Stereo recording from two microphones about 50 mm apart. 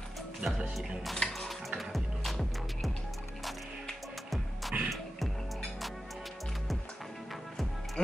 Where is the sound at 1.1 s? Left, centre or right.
Centre.